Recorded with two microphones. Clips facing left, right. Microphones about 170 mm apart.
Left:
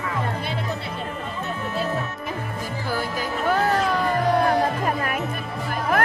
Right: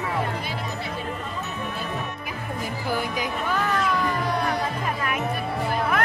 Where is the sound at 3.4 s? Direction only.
50° left (ahead or behind).